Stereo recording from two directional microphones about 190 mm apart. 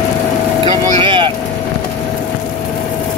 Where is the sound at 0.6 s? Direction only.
25° right (ahead or behind).